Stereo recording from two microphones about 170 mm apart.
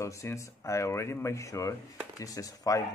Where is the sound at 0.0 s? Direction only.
20° left (ahead or behind).